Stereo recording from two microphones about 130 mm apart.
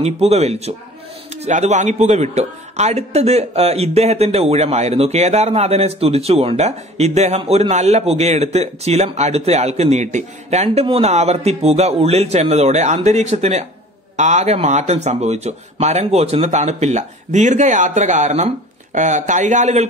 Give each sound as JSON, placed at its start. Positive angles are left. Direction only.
{"t": 0.0, "sound": "a man's voice", "side_deg": -55}